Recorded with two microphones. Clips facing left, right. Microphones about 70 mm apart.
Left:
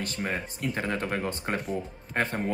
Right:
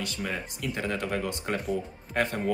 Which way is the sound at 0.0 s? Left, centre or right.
Left.